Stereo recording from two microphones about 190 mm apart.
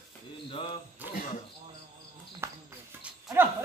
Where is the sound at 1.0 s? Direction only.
10° right (ahead or behind).